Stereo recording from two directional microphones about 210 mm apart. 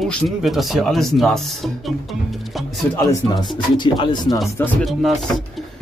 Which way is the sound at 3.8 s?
20° left (ahead or behind).